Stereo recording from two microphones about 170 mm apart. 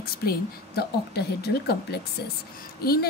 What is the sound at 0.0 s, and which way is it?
A woman's voice, 65° left (ahead or behind).